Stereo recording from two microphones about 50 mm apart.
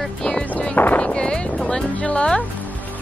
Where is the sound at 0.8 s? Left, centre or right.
Left.